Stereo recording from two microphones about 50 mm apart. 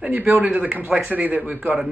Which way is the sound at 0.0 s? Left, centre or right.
Right.